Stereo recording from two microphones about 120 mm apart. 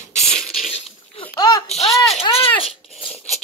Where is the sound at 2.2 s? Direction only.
50° left (ahead or behind).